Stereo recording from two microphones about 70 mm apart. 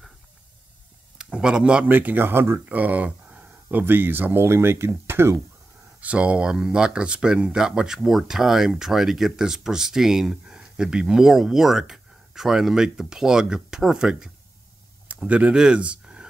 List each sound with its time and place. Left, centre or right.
1.1 s speech: centre
1.9 s speech: right
2.7 s speech: right
5.9 s speech: centre